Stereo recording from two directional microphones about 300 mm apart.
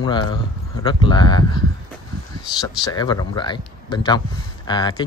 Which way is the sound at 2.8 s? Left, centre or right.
Centre.